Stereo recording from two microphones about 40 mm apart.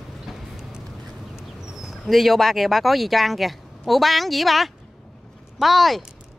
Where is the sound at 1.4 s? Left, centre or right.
Centre.